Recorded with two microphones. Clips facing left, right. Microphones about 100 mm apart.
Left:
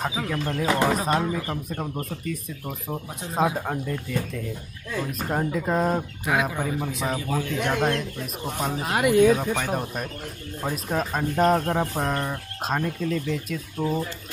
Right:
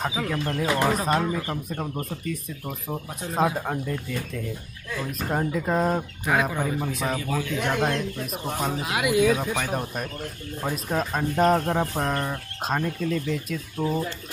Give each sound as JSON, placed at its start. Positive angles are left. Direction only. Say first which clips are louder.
{"t": 0.2, "sound": "speech", "louder": "even", "side_deg": 0}
{"t": 7.2, "sound": "speech", "louder": "left 1 dB", "side_deg": 30}
{"t": 7.6, "sound": "speech", "louder": "left 1 dB", "side_deg": 0}
{"t": 8.8, "sound": "speech", "louder": "left 4 dB", "side_deg": 40}
{"t": 9.2, "sound": "speech", "louder": "left 3 dB", "side_deg": -5}